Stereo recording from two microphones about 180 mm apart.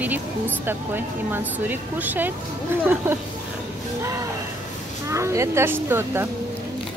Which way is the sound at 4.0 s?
15° right (ahead or behind).